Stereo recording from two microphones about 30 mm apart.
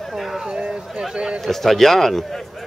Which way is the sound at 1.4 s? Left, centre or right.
Centre.